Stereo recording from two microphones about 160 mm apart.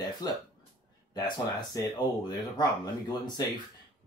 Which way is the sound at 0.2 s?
25° left (ahead or behind).